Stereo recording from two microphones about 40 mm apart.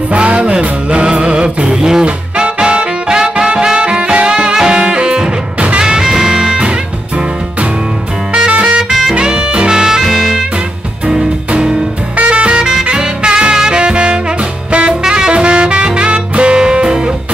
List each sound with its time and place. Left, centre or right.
0.1 s music: right
5.9 s music: centre
8.3 s music: right
12.3 s music: right